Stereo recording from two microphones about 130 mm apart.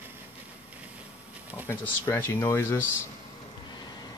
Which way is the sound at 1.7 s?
20° left (ahead or behind).